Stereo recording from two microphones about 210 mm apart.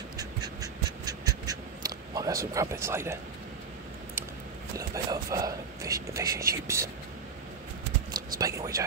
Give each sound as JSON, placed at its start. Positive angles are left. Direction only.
{"t": 0.2, "sound": "a sound", "side_deg": -20}
{"t": 4.7, "sound": "speech", "side_deg": -15}
{"t": 8.4, "sound": "speech", "side_deg": -15}